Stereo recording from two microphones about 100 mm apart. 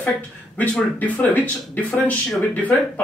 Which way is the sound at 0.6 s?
15° left (ahead or behind).